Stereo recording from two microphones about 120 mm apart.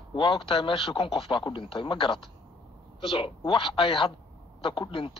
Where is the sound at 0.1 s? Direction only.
45° left (ahead or behind).